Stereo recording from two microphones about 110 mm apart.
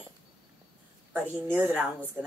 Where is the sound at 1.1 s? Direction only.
15° right (ahead or behind).